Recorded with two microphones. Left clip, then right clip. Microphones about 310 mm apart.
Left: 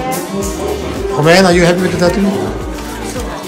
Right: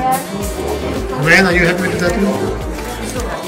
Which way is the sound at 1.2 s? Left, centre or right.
Centre.